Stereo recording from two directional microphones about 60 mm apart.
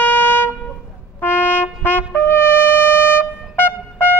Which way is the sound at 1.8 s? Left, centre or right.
Left.